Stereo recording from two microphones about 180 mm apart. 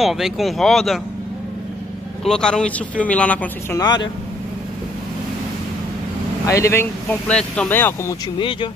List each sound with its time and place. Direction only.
0.0 s speech: centre (ahead or behind)
2.2 s speech: 5° left (ahead or behind)
3.7 s speech: 20° left (ahead or behind)
6.4 s speech: 15° left (ahead or behind)
8.4 s speech: 30° left (ahead or behind)